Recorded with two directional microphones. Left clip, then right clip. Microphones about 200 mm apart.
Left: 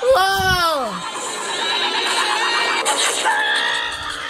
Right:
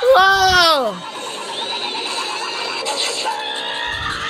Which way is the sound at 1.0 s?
10° left (ahead or behind).